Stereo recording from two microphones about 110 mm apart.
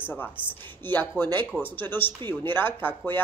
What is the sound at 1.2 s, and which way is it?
Speech, 20° left (ahead or behind).